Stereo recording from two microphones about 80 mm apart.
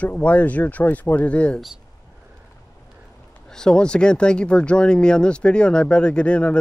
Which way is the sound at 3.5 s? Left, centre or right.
Centre.